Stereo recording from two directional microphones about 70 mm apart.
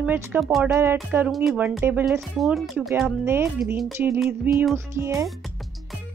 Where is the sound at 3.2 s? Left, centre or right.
Right.